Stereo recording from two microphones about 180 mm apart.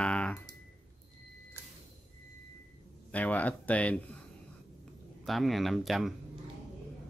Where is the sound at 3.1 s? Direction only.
10° left (ahead or behind).